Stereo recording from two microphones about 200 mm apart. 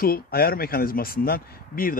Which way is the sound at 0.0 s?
50° left (ahead or behind).